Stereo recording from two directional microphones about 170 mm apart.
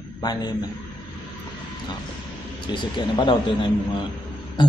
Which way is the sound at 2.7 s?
25° left (ahead or behind).